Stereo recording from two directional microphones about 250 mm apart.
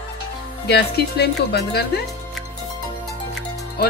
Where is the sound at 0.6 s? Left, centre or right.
Left.